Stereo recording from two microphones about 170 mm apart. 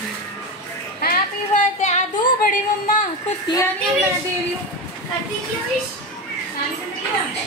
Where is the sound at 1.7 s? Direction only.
45° left (ahead or behind).